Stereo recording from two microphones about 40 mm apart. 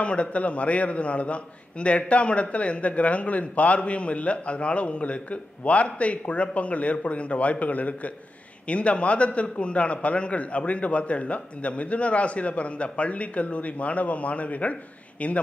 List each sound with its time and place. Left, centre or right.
0.0 s a man's voice: left